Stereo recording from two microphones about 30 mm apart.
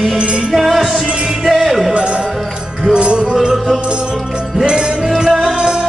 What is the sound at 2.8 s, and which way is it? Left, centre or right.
Music, right.